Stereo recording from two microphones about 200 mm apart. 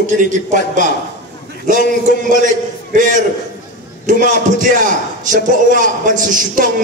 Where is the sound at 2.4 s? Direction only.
40° right (ahead or behind).